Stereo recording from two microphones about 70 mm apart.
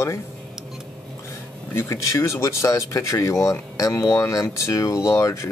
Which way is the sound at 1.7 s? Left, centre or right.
Left.